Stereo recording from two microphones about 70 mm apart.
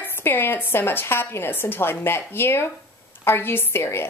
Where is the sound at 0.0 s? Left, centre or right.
Left.